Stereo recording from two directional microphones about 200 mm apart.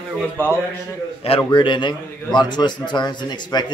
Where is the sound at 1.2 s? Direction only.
25° left (ahead or behind).